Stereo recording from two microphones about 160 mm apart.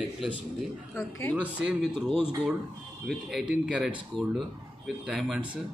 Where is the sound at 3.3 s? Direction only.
Centre (ahead or behind).